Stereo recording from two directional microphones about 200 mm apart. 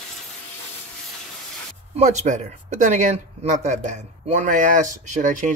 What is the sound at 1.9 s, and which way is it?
Speech, 35° right (ahead or behind).